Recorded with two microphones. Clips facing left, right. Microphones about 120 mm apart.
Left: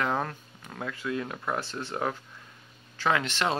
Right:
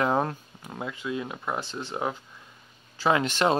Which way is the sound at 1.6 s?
Centre (ahead or behind).